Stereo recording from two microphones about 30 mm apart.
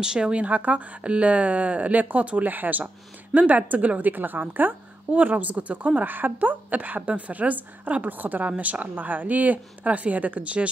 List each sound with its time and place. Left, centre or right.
0.0 s speech: right
0.4 s speech: right
2.4 s speech: right
3.3 s a woman's voice: right
4.0 s a woman's voice: right
5.4 s a woman's voice: right
5.9 s speech: right
7.1 s a woman's voice: right
8.1 s a woman's voice: right